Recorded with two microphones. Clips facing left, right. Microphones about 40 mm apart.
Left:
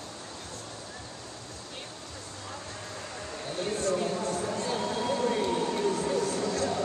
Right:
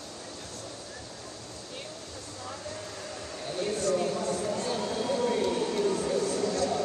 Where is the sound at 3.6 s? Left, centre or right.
Left.